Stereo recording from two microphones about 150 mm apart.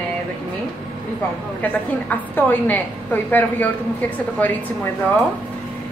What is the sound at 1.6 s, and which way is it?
A woman's voice, 10° left (ahead or behind).